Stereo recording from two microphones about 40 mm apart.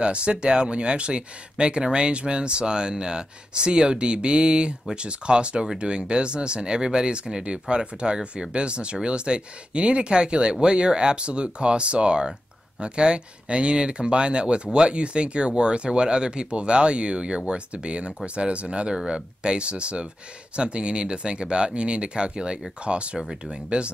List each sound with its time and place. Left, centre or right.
0.0 s speech: right